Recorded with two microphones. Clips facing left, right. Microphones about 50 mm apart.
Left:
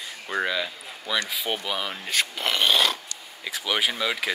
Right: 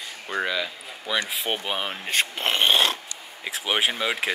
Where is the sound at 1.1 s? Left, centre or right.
Centre.